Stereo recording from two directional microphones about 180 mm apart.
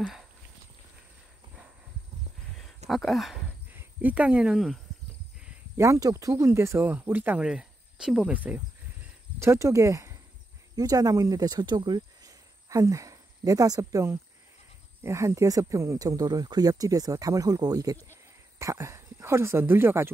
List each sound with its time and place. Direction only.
0.0 s a sound: centre (ahead or behind)
2.9 s speech: centre (ahead or behind)
5.8 s speech: 15° right (ahead or behind)